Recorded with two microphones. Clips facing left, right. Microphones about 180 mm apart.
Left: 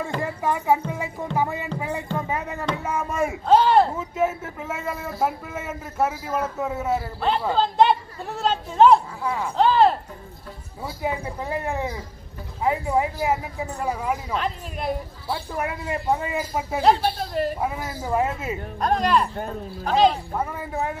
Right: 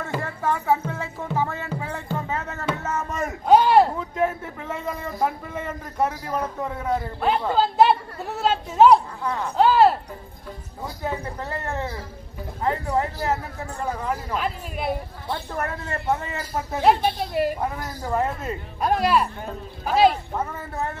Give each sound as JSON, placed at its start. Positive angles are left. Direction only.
{"t": 0.2, "sound": "music", "side_deg": 15}
{"t": 1.3, "sound": "speech", "side_deg": 15}
{"t": 3.4, "sound": "speech", "side_deg": -10}
{"t": 3.9, "sound": "a man's voice", "side_deg": 5}
{"t": 9.7, "sound": "a man's voice", "side_deg": -5}
{"t": 11.0, "sound": "speech", "side_deg": 10}
{"t": 14.3, "sound": "a man's voice", "side_deg": -5}
{"t": 15.2, "sound": "speech", "side_deg": 10}
{"t": 16.8, "sound": "speech", "side_deg": -10}
{"t": 17.6, "sound": "speech", "side_deg": 10}
{"t": 18.8, "sound": "a man's voice", "side_deg": -5}
{"t": 20.3, "sound": "speech", "side_deg": 10}